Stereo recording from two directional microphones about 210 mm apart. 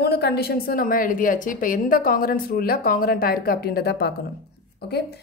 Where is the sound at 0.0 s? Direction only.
50° left (ahead or behind).